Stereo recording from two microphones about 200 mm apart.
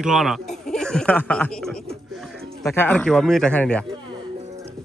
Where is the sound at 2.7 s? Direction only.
5° left (ahead or behind).